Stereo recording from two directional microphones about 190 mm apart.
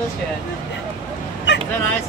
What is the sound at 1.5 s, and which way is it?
Vehicle, 65° left (ahead or behind).